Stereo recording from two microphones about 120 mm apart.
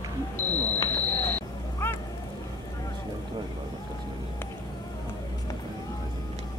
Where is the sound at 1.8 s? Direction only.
20° left (ahead or behind).